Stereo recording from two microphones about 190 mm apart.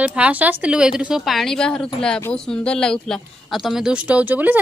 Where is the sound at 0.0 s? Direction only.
5° right (ahead or behind).